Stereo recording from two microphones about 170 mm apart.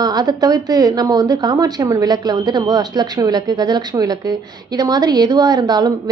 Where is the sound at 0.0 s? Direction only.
25° right (ahead or behind).